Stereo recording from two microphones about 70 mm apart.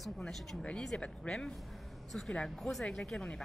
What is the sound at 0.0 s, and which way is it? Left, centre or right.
A woman's voice, centre.